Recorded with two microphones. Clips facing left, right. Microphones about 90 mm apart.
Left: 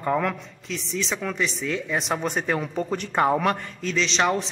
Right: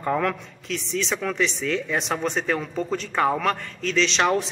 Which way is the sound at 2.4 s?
20° left (ahead or behind).